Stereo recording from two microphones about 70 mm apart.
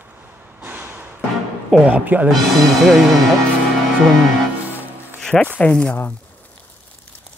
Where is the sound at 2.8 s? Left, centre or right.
Centre.